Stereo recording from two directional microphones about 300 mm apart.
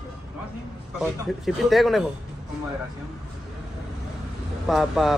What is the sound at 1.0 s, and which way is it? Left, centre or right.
Speech, centre.